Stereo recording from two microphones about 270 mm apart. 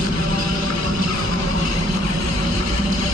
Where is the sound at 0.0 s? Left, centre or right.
Right.